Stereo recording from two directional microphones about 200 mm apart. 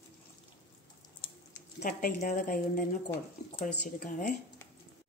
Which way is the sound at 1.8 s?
45° left (ahead or behind).